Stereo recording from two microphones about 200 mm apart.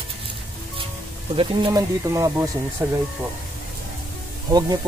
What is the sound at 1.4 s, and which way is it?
Speech, 20° right (ahead or behind).